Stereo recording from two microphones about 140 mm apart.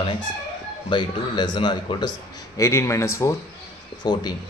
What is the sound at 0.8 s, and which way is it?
A man's voice, 35° left (ahead or behind).